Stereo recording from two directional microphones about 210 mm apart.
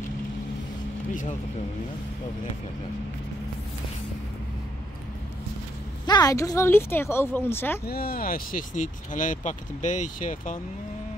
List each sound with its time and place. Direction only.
6.0 s speech: 20° left (ahead or behind)
7.8 s speech: 45° left (ahead or behind)